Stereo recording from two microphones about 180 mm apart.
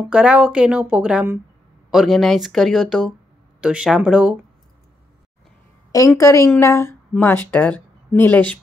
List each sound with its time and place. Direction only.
0.0 s a woman's voice: 5° right (ahead or behind)
5.9 s speech: 20° left (ahead or behind)